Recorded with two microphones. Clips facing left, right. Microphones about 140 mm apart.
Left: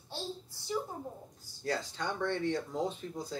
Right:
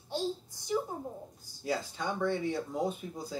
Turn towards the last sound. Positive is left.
turn(degrees=-10)  # may be behind; listen again after turning